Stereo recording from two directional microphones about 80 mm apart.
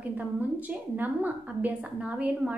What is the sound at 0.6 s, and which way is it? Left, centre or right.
A woman's voice, right.